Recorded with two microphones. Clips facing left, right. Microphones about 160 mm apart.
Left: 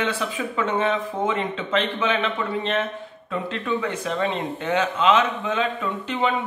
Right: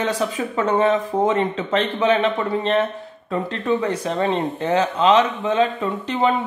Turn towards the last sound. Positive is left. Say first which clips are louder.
# right 4 dB
turn(degrees=-35)  # may be behind; listen again after turning